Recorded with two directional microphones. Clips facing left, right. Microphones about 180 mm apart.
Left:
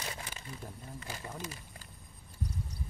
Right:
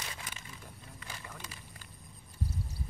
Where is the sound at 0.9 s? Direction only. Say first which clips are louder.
Left 4 dB; 35° left (ahead or behind).